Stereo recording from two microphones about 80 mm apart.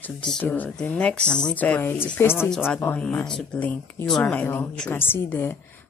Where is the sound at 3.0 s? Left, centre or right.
Centre.